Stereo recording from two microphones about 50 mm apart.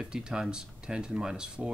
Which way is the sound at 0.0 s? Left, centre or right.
Centre.